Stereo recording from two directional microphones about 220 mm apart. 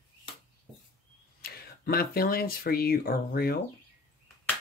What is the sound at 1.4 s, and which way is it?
Speech, 40° left (ahead or behind).